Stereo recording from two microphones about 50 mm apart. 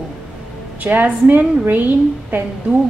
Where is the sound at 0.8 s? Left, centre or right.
Right.